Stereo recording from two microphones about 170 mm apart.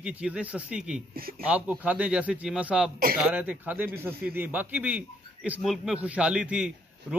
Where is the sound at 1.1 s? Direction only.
60° right (ahead or behind).